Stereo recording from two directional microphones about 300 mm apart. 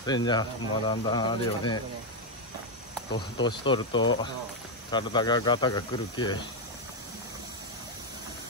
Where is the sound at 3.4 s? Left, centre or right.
Centre.